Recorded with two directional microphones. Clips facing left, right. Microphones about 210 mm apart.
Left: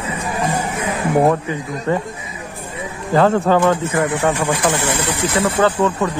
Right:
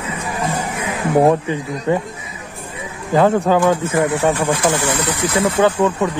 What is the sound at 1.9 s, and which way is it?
Speech, 20° right (ahead or behind).